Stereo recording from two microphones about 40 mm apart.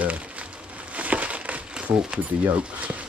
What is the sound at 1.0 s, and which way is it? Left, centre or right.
Crumpling, right.